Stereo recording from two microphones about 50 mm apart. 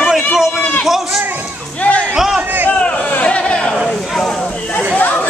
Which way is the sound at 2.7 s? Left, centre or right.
Left.